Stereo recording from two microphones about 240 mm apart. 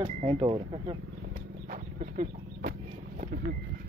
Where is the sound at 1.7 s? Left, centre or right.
Right.